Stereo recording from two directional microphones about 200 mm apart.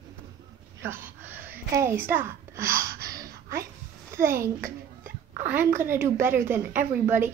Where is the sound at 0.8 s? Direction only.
10° right (ahead or behind).